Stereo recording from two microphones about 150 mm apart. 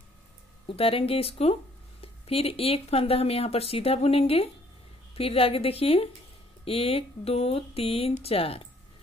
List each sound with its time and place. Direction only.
0.7 s speech: 40° left (ahead or behind)